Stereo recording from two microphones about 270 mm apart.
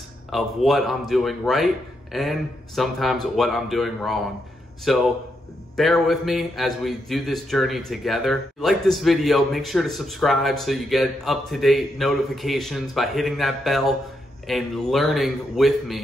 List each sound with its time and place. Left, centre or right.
0.3 s speech: centre